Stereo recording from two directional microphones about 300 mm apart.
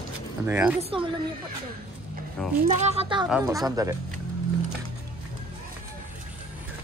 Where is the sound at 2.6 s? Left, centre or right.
Right.